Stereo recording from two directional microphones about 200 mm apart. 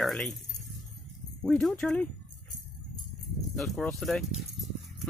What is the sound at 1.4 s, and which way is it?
Speech, 5° left (ahead or behind).